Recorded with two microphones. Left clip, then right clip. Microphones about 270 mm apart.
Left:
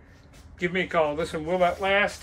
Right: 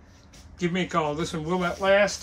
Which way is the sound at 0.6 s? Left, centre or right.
Centre.